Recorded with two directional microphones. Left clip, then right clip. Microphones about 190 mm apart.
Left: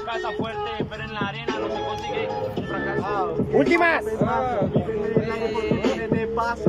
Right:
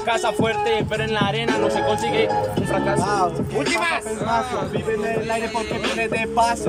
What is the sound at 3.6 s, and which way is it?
Speech, 35° left (ahead or behind).